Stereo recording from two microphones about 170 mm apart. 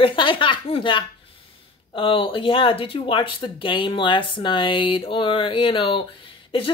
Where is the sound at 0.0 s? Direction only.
30° left (ahead or behind).